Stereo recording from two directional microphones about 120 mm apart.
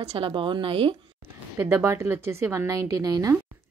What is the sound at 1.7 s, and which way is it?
A woman's voice, 20° right (ahead or behind).